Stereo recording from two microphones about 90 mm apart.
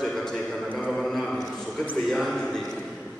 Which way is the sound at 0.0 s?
5° left (ahead or behind).